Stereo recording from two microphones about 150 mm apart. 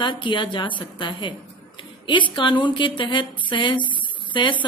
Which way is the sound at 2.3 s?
30° left (ahead or behind).